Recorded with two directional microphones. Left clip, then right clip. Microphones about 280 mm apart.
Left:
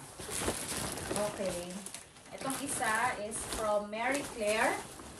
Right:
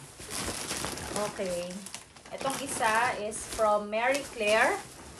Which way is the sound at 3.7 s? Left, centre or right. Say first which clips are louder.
Right 3 dB; right.